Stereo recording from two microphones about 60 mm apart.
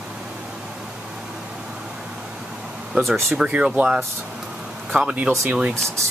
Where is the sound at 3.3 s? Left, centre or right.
Centre.